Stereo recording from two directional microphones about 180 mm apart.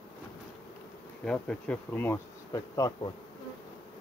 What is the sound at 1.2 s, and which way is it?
Bee, 5° left (ahead or behind).